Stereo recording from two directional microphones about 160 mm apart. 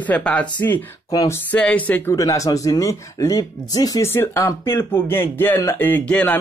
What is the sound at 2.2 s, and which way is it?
Speech, 20° left (ahead or behind).